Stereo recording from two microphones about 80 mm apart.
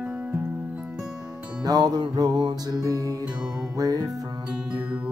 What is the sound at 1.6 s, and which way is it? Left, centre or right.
Music, right.